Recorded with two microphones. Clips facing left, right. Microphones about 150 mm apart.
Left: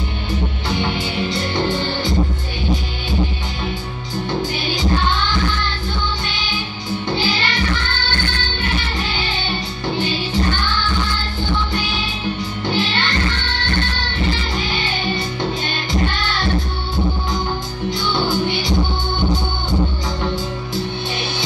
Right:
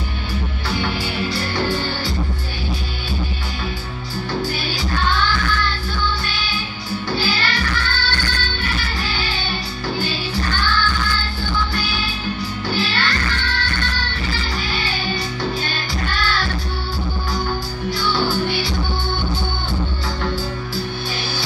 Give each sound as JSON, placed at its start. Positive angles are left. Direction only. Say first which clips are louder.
{"t": 0.7, "sound": "music", "louder": "left 1 dB", "side_deg": 20}
{"t": 4.3, "sound": "music", "louder": "left 1 dB", "side_deg": 20}
{"t": 7.1, "sound": "music", "louder": "left 1 dB", "side_deg": 20}
{"t": 9.9, "sound": "music", "louder": "left 5 dB", "side_deg": 20}
{"t": 12.6, "sound": "music", "louder": "left 2 dB", "side_deg": 20}
{"t": 17.9, "sound": "music", "louder": "even", "side_deg": 20}